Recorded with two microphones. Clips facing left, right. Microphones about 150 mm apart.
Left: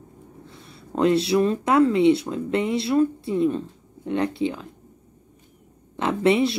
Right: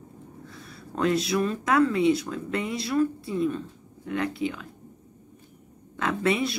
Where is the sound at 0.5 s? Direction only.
25° left (ahead or behind).